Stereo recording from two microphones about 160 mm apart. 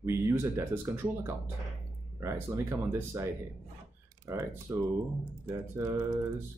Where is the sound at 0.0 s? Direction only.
15° right (ahead or behind).